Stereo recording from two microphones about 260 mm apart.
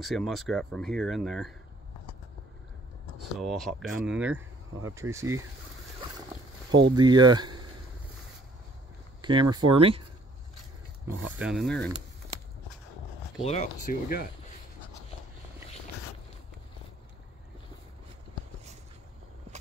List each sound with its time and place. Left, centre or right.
0.0 s speech: centre
3.3 s speech: centre
7.0 s speech: centre
9.2 s speech: centre
11.3 s speech: centre
13.4 s speech: left